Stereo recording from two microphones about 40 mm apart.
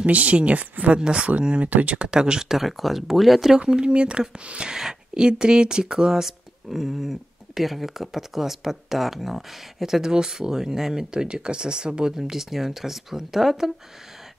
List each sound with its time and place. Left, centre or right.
0.0 s speech: right
2.0 s speech: centre
3.5 s speech: right; by 13.7 s centre